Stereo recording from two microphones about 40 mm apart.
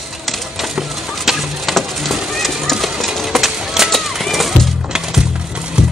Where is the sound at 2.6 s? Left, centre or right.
Centre.